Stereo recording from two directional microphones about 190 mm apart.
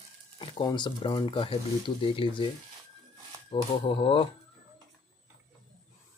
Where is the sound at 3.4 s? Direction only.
25° left (ahead or behind).